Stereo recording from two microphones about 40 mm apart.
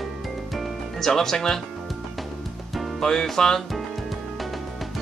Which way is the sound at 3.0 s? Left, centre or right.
Centre.